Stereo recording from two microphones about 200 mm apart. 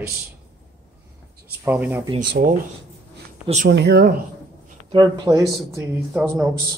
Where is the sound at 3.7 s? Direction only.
55° right (ahead or behind).